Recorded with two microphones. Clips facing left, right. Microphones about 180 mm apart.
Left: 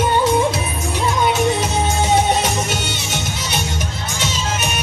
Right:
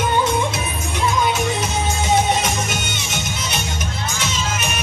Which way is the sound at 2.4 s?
35° left (ahead or behind).